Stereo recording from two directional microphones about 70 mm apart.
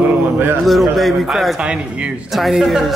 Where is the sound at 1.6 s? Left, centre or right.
Centre.